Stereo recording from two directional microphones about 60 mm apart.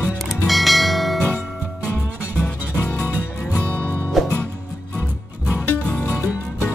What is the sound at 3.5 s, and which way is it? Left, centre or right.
Music, left.